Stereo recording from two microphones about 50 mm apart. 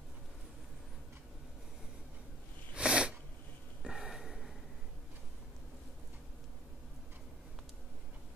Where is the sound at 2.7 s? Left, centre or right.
Centre.